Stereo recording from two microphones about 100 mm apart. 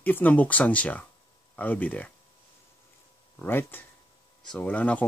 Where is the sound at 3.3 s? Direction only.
20° left (ahead or behind).